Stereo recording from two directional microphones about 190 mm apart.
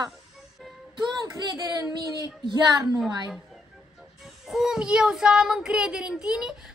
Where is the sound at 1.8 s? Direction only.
20° right (ahead or behind).